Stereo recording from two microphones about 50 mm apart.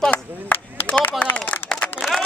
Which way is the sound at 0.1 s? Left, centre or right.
Left.